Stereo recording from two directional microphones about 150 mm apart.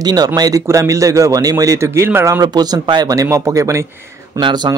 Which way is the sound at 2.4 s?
25° right (ahead or behind).